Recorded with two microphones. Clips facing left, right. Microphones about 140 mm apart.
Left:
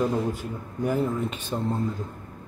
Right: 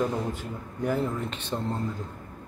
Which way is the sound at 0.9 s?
10° left (ahead or behind).